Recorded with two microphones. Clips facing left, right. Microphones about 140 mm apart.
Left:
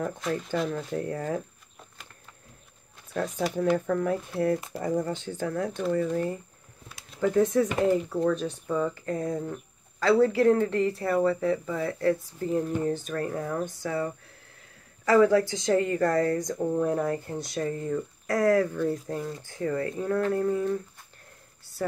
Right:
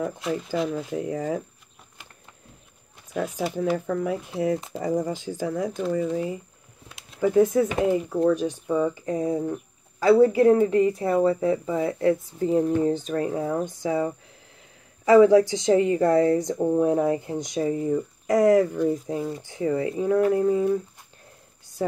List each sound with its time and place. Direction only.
0.0 s a woman's voice: 5° right (ahead or behind)
3.1 s a woman's voice: 10° right (ahead or behind)